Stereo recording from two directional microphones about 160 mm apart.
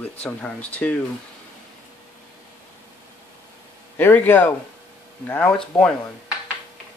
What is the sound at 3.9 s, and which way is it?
Speech, 10° left (ahead or behind).